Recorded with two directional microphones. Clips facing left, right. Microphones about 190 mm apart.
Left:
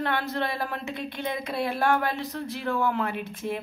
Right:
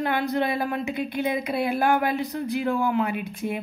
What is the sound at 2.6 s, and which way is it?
Speech, 15° right (ahead or behind).